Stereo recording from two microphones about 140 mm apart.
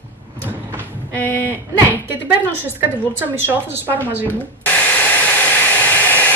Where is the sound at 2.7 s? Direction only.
15° right (ahead or behind).